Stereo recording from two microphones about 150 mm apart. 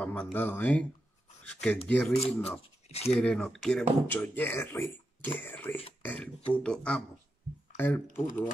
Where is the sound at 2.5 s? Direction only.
45° left (ahead or behind).